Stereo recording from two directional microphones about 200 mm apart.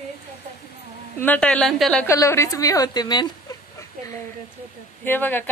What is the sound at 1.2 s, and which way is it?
A woman's voice, 5° left (ahead or behind).